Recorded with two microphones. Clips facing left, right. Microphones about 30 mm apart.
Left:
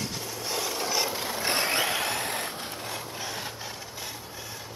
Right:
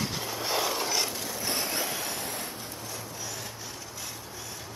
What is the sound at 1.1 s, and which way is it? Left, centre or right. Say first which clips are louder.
Rub: left 4 dB; left.